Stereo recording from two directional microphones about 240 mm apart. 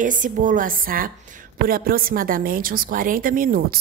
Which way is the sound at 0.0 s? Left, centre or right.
Right.